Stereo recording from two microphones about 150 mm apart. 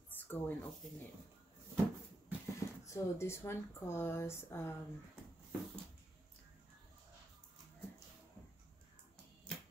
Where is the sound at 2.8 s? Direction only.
20° left (ahead or behind).